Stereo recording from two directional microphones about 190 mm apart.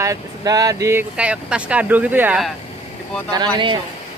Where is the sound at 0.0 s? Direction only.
20° right (ahead or behind).